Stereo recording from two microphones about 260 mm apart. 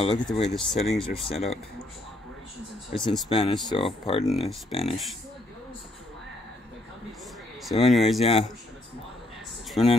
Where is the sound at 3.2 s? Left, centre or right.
Left.